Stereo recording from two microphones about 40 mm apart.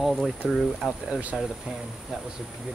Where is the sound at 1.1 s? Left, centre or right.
Right.